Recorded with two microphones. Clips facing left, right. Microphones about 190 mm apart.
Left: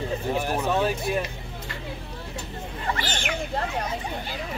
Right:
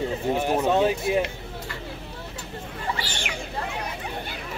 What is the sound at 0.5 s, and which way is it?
Speech, 20° right (ahead or behind).